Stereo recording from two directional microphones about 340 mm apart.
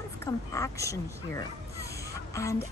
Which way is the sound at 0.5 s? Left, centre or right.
Centre.